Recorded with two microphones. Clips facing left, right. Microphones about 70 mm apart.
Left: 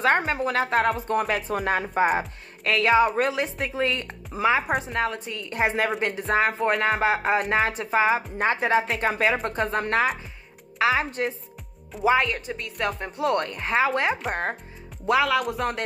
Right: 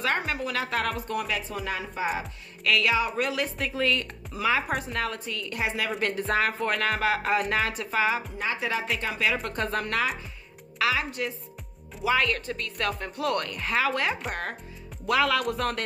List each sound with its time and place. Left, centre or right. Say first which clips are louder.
0.0 s speech: left 6 dB; left
3.2 s music: left 4 dB; left
5.6 s speech: left 6 dB; left
5.9 s speech: left 1 dB; centre
6.3 s music: left 6 dB; left
8.4 s speech: left 7 dB; left
9.5 s music: left 3 dB; left
10.8 s speech: left 4 dB; left
12.0 s music: left 4 dB; left
12.3 s music: even; centre
15.0 s speech: left 2 dB; centre